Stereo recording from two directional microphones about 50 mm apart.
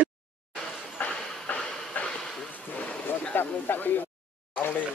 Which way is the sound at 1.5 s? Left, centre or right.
Left.